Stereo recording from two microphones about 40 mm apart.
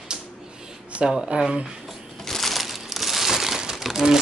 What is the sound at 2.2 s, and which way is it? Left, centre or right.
Crushing, centre.